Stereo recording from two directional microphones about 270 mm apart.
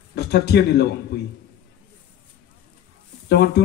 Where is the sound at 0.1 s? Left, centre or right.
Left.